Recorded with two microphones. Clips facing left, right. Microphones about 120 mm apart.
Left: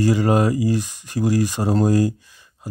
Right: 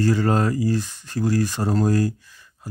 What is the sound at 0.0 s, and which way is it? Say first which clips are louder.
Speech: left 3 dB; 15° left (ahead or behind).